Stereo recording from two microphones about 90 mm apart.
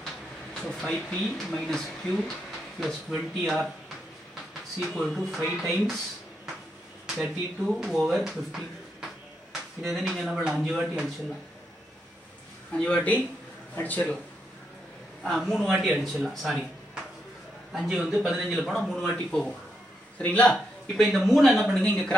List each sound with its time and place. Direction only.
0.6 s a man's voice: 10° left (ahead or behind)
4.9 s a man's voice: centre (ahead or behind)
7.2 s a man's voice: 5° right (ahead or behind)
12.7 s speech: 15° left (ahead or behind)
15.2 s a man's voice: 5° left (ahead or behind)
20.5 s a man's voice: 5° left (ahead or behind)